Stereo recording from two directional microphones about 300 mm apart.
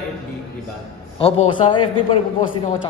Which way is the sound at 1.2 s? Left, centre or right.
Centre.